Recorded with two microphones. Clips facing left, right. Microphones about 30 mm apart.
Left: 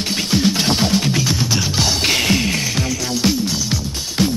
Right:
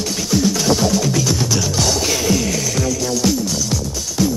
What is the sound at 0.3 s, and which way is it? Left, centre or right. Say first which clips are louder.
Music: right 1 dB; left.